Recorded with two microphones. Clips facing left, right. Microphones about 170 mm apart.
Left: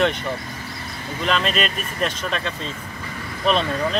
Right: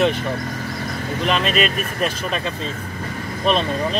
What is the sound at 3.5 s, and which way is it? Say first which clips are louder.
Speech: right 1 dB; 35° right (ahead or behind).